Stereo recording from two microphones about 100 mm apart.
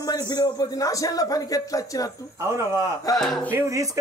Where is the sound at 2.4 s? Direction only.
25° right (ahead or behind).